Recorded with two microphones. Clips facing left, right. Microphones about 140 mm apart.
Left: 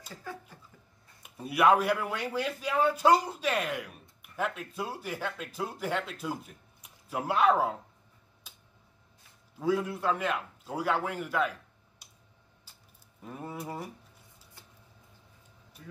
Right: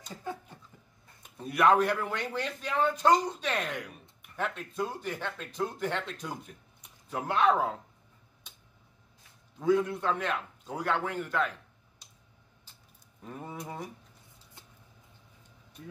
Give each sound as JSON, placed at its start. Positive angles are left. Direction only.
{"t": 0.2, "sound": "cough", "side_deg": -25}
{"t": 1.2, "sound": "speech", "side_deg": 5}
{"t": 8.5, "sound": "tick-tock", "side_deg": 5}
{"t": 9.6, "sound": "speech", "side_deg": 5}
{"t": 13.2, "sound": "speech", "side_deg": 5}